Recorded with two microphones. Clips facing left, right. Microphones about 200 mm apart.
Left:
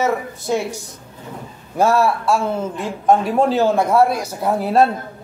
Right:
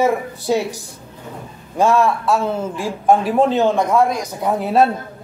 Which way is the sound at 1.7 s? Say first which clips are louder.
Right 1 dB; 10° left (ahead or behind).